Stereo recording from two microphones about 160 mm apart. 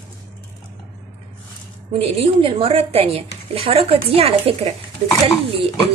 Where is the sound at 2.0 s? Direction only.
35° right (ahead or behind).